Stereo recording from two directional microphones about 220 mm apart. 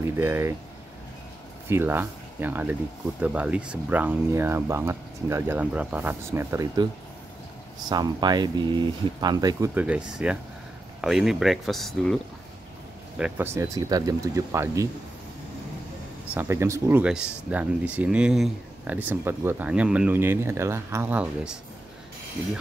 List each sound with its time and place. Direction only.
0.0 s speech: 10° right (ahead or behind)
1.7 s speech: 10° right (ahead or behind)
7.9 s speech: 20° right (ahead or behind); by 12.2 s centre (ahead or behind)
13.2 s speech: 10° right (ahead or behind)
16.3 s speech: 10° right (ahead or behind)